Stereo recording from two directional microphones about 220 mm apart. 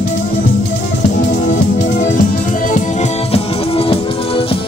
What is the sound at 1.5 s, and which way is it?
Music, 35° left (ahead or behind).